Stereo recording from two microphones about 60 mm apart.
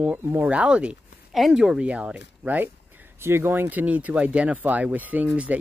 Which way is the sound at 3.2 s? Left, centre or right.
Right.